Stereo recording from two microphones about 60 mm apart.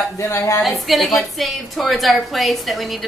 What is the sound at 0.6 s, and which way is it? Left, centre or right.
A woman's voice, centre.